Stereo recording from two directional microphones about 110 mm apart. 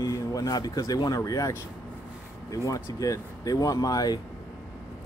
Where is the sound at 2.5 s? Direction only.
30° left (ahead or behind).